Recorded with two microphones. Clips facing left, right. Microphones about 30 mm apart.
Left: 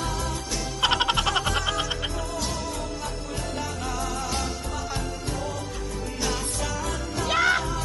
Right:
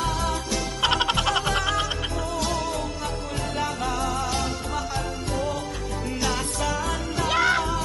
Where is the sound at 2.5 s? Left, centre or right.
Right.